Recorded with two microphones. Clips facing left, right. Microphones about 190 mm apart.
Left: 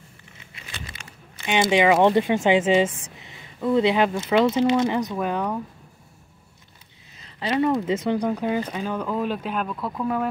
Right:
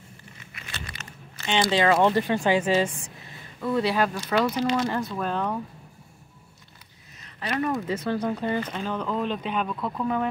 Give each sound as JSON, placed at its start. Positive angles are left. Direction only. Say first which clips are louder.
{"t": 0.7, "sound": "a sound", "louder": "even", "side_deg": 15}
{"t": 2.7, "sound": "speech", "louder": "left 4 dB", "side_deg": 20}
{"t": 7.3, "sound": "speech", "louder": "left 5 dB", "side_deg": 25}